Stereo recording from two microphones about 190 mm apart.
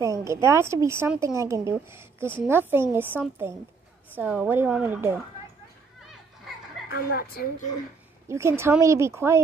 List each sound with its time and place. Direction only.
0.0 s a woman's voice: 15° right (ahead or behind)
6.9 s a woman's voice: 55° left (ahead or behind)
8.3 s a woman's voice: 15° right (ahead or behind)